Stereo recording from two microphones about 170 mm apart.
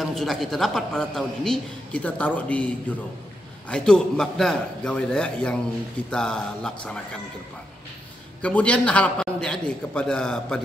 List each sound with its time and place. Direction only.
0.0 s a man's voice: centre (ahead or behind)
8.4 s a man's voice: 5° left (ahead or behind)